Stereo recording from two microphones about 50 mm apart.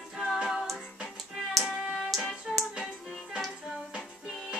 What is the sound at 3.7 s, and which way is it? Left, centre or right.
Music, centre.